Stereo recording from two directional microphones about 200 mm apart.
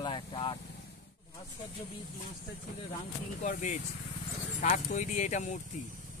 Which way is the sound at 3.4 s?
40° left (ahead or behind).